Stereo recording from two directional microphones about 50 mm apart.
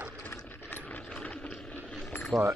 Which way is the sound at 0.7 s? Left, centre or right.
Left.